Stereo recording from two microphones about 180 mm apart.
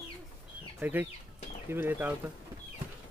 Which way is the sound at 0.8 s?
10° right (ahead or behind).